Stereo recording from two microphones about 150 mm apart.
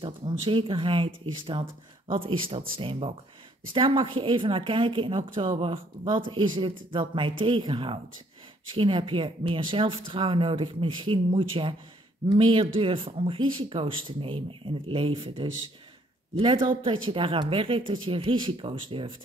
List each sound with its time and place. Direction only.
0.0 s speech: 35° right (ahead or behind)